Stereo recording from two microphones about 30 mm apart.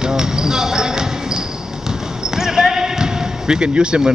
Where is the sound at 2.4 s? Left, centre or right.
Centre.